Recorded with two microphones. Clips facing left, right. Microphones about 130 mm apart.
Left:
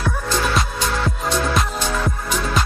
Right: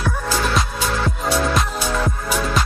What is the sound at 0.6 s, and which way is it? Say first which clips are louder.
Music: even; centre (ahead or behind).